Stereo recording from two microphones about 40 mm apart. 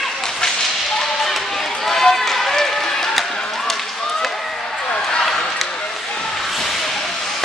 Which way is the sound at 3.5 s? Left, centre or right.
Centre.